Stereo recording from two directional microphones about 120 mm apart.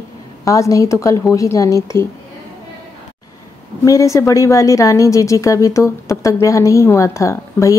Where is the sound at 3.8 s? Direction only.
25° left (ahead or behind).